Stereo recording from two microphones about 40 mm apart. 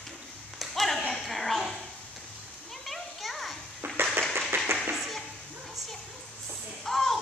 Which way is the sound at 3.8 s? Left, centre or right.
Right.